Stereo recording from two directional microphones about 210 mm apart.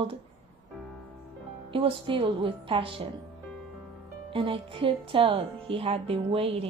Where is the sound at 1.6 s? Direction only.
25° right (ahead or behind).